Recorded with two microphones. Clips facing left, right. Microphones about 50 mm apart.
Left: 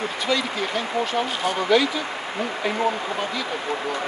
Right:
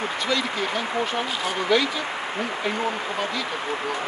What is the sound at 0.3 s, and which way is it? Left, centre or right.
Speech, centre.